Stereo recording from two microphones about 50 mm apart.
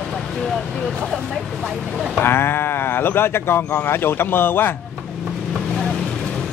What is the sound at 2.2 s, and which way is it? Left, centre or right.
Speech, left.